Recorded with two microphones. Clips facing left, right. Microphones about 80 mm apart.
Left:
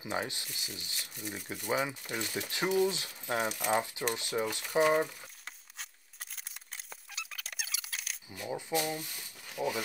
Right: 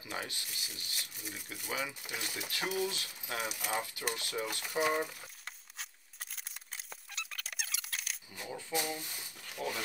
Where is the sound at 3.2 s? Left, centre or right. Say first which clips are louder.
Left 6 dB; left.